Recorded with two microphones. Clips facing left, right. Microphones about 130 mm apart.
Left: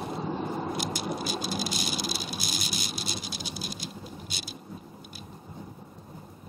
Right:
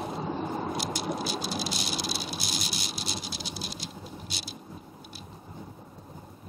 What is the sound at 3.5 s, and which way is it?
Patter, 50° left (ahead or behind).